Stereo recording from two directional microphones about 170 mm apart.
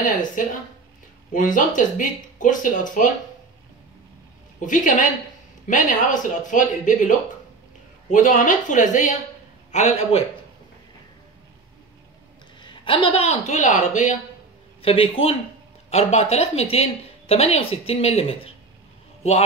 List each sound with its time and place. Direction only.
0.0 s speech: 50° left (ahead or behind)
4.6 s speech: 50° left (ahead or behind)
12.6 s speech: 30° left (ahead or behind); by 14.1 s 45° left (ahead or behind)
14.8 s speech: 35° left (ahead or behind)